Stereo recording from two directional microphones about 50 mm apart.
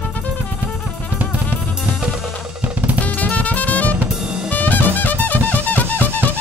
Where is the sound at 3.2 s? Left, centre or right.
Left.